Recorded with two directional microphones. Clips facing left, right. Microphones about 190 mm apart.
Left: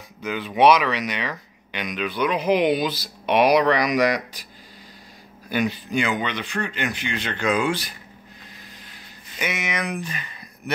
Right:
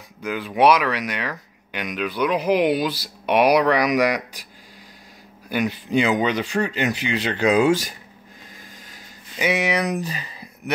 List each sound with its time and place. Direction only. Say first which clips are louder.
0.2 s speech: even; 5° right (ahead or behind)
5.5 s speech: even; 10° right (ahead or behind)
5.9 s speech: right 5 dB; 35° right (ahead or behind)
9.4 s speech: right 6 dB; 35° right (ahead or behind)